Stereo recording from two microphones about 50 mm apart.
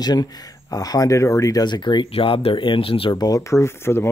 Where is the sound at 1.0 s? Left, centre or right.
Left.